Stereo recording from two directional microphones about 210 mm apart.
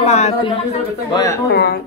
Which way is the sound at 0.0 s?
30° left (ahead or behind).